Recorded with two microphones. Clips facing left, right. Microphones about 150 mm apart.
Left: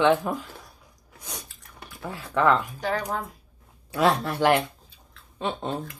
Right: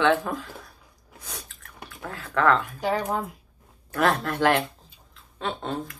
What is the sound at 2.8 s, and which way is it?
Speech, 15° right (ahead or behind).